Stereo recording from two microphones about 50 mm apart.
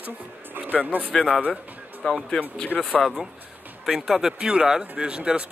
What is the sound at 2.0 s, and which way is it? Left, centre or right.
Speech, centre.